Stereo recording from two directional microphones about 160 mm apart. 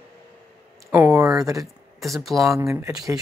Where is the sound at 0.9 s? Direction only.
15° right (ahead or behind).